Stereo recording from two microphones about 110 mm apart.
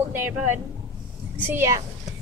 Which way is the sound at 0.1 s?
20° right (ahead or behind).